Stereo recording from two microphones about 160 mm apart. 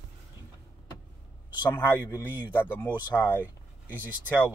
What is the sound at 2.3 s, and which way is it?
Speech, 10° right (ahead or behind).